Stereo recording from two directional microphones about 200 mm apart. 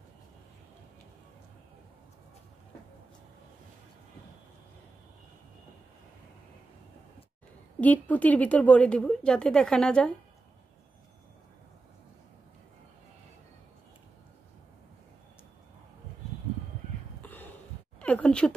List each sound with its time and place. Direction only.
7.8 s a woman's voice: 10° left (ahead or behind)
17.2 s sigh: 10° left (ahead or behind)
18.0 s a sound: 5° left (ahead or behind)